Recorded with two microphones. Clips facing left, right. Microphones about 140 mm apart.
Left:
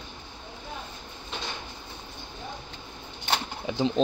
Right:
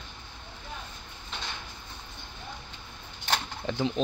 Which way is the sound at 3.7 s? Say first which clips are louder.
Left 4 dB; 30° left (ahead or behind).